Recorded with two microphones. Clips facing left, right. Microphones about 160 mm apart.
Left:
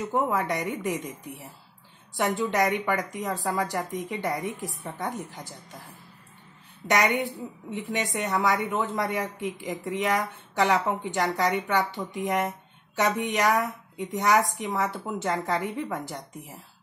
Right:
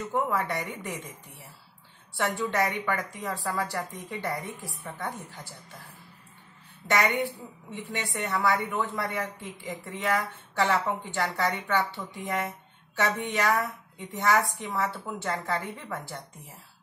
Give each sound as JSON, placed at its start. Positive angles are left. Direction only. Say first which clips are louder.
{"t": 0.0, "sound": "a woman's voice", "louder": "left 2 dB", "side_deg": 20}
{"t": 6.8, "sound": "a woman's voice", "louder": "left 2 dB", "side_deg": 20}